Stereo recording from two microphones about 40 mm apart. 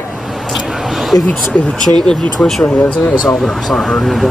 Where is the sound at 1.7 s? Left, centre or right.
Centre.